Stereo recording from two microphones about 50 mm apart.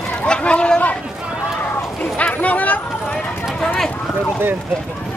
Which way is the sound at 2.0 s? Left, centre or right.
Left.